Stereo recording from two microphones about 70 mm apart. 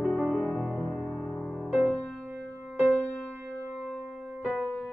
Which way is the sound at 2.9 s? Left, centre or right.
Left.